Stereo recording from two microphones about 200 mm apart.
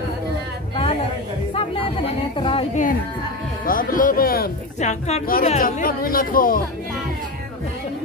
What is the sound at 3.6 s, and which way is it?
Speech, 45° left (ahead or behind).